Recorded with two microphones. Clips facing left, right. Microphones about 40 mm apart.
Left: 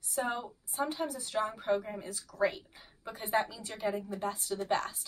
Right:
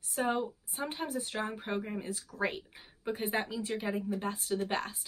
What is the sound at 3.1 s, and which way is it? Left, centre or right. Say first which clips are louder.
A woman's voice: left 1 dB; right.